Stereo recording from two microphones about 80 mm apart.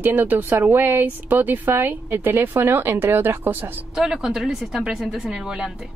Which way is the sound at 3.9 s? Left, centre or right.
Centre.